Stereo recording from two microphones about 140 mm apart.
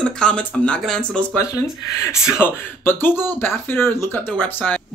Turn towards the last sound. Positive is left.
turn(degrees=10)  # may be behind; listen again after turning